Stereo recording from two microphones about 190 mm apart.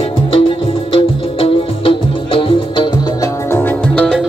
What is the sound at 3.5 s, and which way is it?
Music, 10° left (ahead or behind).